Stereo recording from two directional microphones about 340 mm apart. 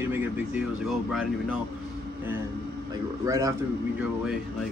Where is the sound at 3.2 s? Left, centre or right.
Centre.